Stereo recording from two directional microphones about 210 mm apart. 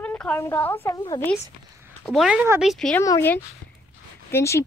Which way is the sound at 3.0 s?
10° left (ahead or behind).